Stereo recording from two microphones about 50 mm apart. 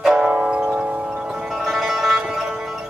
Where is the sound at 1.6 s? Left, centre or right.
Centre.